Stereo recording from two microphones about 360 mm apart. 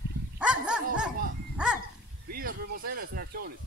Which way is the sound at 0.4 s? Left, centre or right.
Centre.